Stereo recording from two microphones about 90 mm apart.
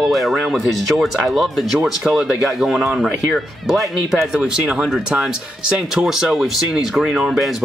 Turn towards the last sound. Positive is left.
turn(degrees=0)  # may be behind; listen again after turning